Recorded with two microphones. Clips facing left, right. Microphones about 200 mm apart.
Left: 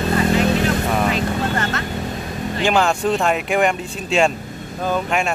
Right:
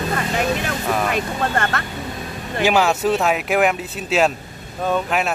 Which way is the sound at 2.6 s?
5° right (ahead or behind).